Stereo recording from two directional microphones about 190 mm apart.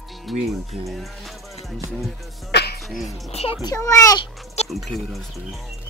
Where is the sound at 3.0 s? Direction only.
30° left (ahead or behind).